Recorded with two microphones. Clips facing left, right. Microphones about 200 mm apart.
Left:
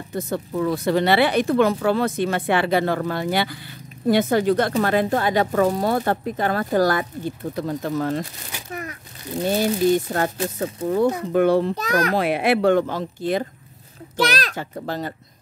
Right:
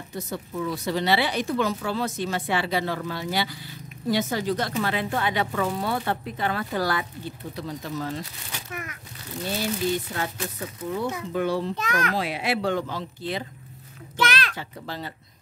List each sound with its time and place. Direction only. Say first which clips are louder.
0.1 s speech: left 7 dB; 55° left (ahead or behind)
4.7 s speech: left 7 dB; 45° left (ahead or behind)
8.6 s a child's voice: left 6 dB; 35° left (ahead or behind)
9.4 s speech: left 8 dB; 45° left (ahead or behind)
11.7 s a child's voice: left 6 dB; 35° left (ahead or behind)
12.2 s speech: left 8 dB; 55° left (ahead or behind)
14.1 s speech: left 4 dB; 40° left (ahead or behind)